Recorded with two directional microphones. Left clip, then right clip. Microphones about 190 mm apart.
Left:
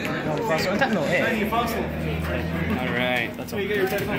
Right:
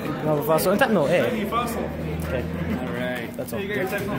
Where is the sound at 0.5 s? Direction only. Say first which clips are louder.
Right 3 dB; 55° right (ahead or behind).